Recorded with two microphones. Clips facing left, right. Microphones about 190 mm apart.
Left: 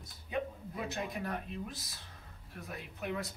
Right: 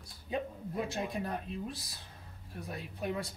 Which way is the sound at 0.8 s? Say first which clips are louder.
Even; 30° right (ahead or behind).